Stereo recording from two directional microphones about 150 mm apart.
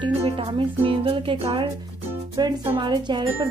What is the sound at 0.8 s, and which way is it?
Speech, 35° right (ahead or behind).